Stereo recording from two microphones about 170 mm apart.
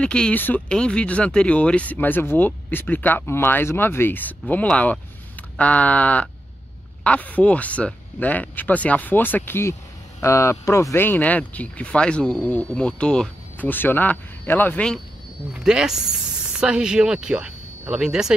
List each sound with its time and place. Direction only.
0.0 s speech: 5° left (ahead or behind)
15.5 s speech: 5° right (ahead or behind)